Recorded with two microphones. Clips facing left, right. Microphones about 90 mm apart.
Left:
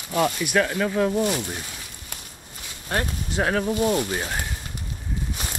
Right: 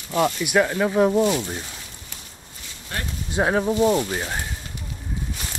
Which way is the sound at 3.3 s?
20° right (ahead or behind).